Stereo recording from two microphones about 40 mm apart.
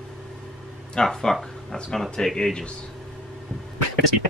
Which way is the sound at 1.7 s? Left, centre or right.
Left.